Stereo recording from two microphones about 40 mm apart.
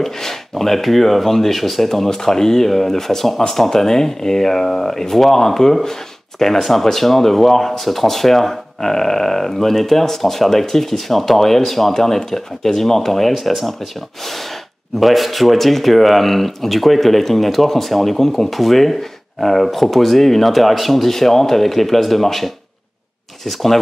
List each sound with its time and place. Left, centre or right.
0.0 s speech: centre
15.0 s speech: centre